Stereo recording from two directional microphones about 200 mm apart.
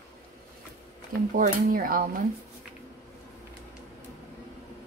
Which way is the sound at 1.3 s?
45° right (ahead or behind).